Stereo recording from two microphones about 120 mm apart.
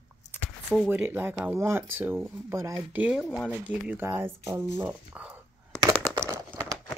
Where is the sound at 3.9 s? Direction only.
20° right (ahead or behind).